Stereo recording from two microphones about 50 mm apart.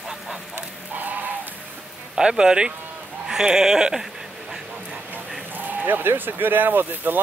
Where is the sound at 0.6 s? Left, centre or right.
Right.